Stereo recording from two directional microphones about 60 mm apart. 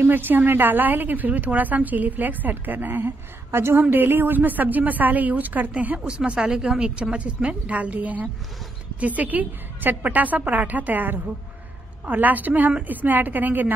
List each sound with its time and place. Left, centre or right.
0.0 s speech: right
3.5 s a woman's voice: right
3.9 s a woman's voice: right